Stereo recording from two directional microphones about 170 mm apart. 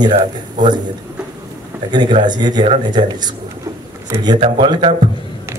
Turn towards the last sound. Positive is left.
turn(degrees=-25)  # may be behind; listen again after turning